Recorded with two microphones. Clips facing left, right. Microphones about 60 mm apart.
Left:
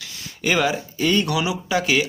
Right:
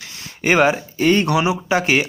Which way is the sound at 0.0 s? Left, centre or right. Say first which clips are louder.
Right 3 dB; right.